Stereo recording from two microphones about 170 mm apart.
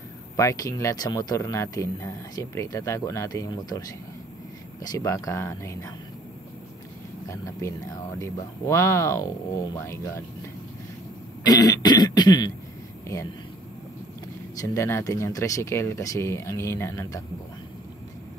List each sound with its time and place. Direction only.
0.4 s speech: 20° left (ahead or behind)
4.9 s speech: 20° left (ahead or behind)
7.2 s speech: 20° left (ahead or behind)
11.4 s throat clearing: 20° left (ahead or behind)
14.6 s speech: 15° left (ahead or behind)